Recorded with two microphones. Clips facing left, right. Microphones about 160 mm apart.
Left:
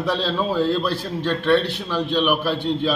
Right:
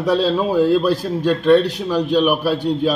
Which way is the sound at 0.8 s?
40° right (ahead or behind).